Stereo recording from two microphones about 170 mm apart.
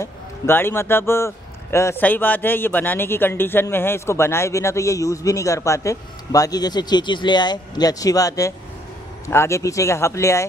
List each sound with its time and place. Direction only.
0.0 s speech: 15° left (ahead or behind)